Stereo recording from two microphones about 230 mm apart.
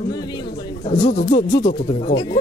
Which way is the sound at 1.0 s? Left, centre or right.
Left.